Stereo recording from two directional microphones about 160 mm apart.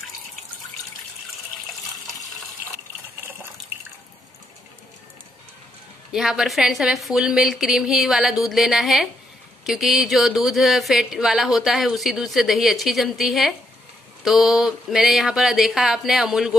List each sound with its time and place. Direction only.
6.1 s speech: 5° right (ahead or behind)